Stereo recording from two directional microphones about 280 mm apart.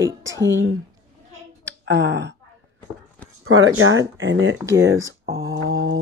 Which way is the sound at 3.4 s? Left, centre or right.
Right.